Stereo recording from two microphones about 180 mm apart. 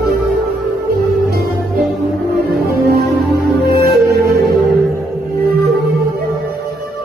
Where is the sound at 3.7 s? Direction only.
60° right (ahead or behind).